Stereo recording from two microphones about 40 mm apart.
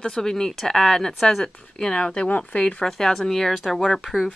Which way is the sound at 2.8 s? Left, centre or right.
Centre.